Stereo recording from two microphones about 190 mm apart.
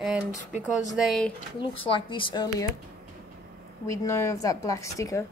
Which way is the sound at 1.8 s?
25° left (ahead or behind).